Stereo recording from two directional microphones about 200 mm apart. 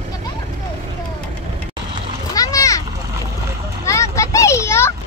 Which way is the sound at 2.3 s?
15° left (ahead or behind).